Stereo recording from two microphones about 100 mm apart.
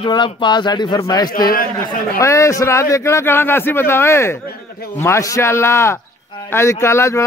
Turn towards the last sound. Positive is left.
turn(degrees=25)  # may be behind; listen again after turning